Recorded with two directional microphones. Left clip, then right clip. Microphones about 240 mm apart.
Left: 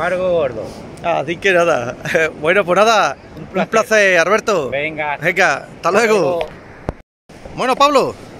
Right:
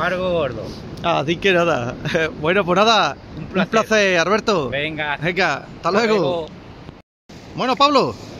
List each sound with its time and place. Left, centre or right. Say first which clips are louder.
0.0 s speech: left 4 dB; centre
0.7 s a man's voice: left 2 dB; centre
7.5 s a man's voice: left 3 dB; centre